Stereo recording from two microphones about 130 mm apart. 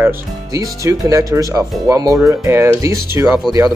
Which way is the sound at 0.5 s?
25° right (ahead or behind).